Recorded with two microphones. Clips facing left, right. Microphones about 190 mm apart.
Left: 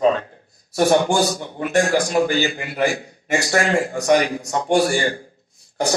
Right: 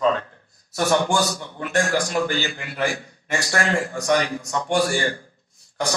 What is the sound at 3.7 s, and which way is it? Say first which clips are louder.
Speech: left 4 dB; 15° left (ahead or behind).